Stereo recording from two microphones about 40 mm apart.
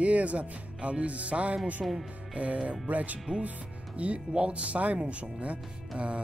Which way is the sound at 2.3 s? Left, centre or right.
Right.